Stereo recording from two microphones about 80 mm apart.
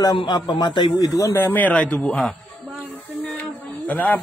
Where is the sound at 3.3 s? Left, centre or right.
Centre.